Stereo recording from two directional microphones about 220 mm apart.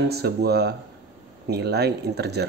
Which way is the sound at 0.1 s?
45° right (ahead or behind).